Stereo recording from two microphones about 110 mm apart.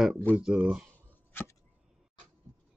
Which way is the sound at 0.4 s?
5° right (ahead or behind).